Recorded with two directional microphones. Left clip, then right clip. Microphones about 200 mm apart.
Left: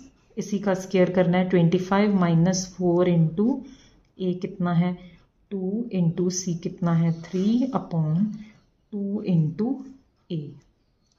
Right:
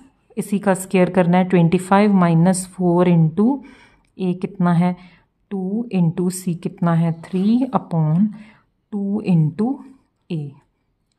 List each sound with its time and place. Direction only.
0.3 s a woman's voice: 35° right (ahead or behind)